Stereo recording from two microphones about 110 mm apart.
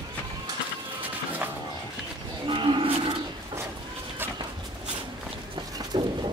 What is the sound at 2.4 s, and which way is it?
Cattle, 45° right (ahead or behind).